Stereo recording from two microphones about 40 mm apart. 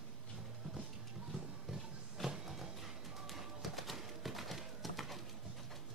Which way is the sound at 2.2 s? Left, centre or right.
Centre.